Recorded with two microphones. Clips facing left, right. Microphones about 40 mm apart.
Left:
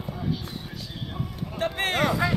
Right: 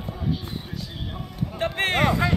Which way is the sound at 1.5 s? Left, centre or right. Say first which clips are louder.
Right 2 dB; right.